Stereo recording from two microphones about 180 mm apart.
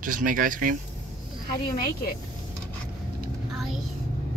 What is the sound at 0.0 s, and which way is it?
Speech, 50° right (ahead or behind).